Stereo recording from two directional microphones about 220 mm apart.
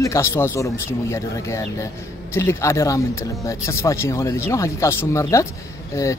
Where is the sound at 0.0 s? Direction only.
10° left (ahead or behind).